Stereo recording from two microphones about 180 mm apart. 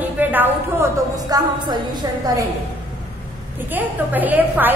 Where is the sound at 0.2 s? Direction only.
10° right (ahead or behind).